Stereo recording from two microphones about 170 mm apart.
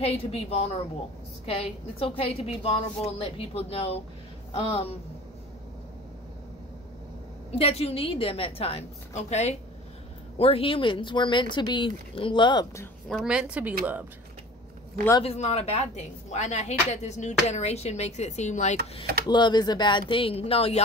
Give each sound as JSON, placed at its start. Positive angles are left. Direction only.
{"t": 0.0, "sound": "speech", "side_deg": 35}
{"t": 7.5, "sound": "speech", "side_deg": 35}
{"t": 13.1, "sound": "a woman's voice", "side_deg": -5}
{"t": 15.2, "sound": "speech", "side_deg": 40}
{"t": 19.2, "sound": "speech", "side_deg": 25}